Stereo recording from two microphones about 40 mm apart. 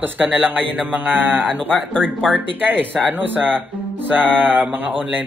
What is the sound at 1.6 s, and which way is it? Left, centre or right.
Speech, left.